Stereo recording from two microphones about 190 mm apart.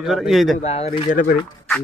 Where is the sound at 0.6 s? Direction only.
35° left (ahead or behind).